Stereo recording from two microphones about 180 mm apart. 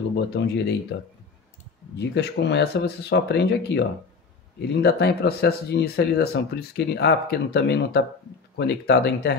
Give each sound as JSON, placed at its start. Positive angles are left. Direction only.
{"t": 0.1, "sound": "speech", "side_deg": 70}
{"t": 2.0, "sound": "speech", "side_deg": 70}